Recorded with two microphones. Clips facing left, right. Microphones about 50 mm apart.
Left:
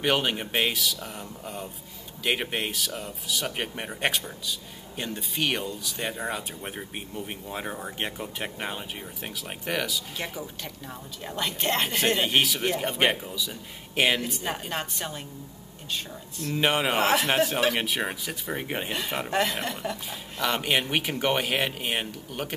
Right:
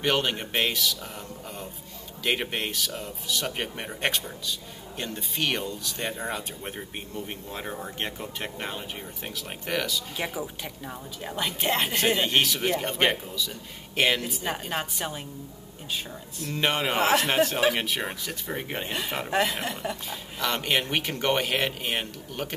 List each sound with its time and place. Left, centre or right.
0.0 s speech: centre
10.1 s speech: centre